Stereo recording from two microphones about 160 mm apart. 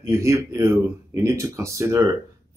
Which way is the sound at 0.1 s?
20° right (ahead or behind).